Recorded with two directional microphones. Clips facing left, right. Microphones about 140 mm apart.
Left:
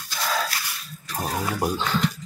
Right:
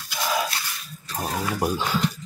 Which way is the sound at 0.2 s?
15° right (ahead or behind).